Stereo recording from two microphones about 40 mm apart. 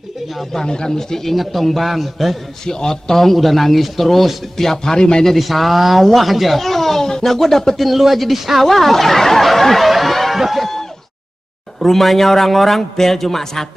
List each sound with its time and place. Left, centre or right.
0.4 s a man's voice: centre
1.3 s speech: centre
2.6 s speech: centre